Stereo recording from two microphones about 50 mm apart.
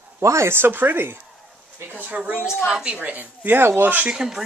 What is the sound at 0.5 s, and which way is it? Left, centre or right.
Speech, right.